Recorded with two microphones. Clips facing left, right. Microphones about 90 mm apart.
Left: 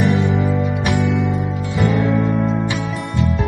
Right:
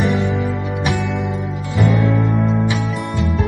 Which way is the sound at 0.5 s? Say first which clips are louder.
Left 2 dB; centre (ahead or behind).